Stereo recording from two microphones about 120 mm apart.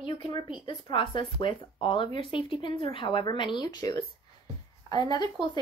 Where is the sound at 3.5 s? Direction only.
35° left (ahead or behind).